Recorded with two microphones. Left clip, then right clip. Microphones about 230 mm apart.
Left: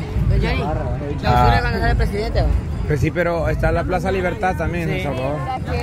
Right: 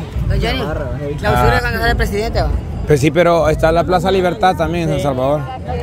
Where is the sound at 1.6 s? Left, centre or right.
Right.